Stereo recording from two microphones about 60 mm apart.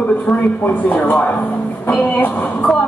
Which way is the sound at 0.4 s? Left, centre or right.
Left.